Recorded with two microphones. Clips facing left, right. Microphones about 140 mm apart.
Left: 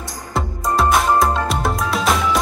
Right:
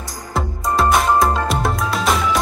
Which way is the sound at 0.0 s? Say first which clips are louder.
Even; centre (ahead or behind).